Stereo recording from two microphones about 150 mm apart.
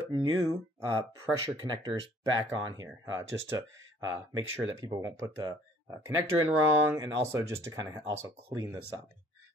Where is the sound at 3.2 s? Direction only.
20° right (ahead or behind).